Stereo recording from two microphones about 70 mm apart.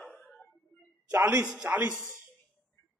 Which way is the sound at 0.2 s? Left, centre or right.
Centre.